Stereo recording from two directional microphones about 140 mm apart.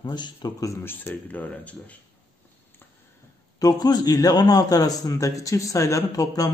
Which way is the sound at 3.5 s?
30° left (ahead or behind).